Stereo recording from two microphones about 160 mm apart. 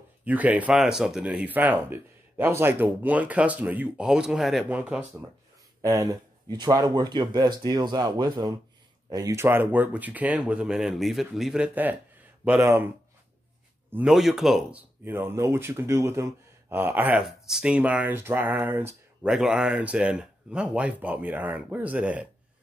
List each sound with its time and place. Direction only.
0.2 s speech: 10° right (ahead or behind)
5.8 s speech: 20° right (ahead or behind)
13.9 s speech: 5° right (ahead or behind)